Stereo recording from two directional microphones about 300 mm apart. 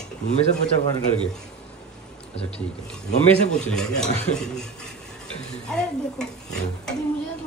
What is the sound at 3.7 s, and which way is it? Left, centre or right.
Stir, centre.